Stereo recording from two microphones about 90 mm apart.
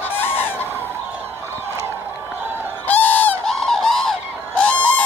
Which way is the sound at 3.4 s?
5° left (ahead or behind).